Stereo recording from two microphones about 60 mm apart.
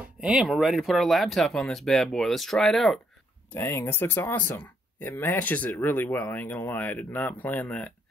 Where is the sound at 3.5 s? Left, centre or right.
Left.